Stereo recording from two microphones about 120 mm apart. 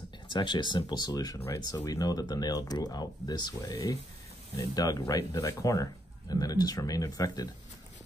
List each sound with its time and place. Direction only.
0.3 s speech: 40° left (ahead or behind)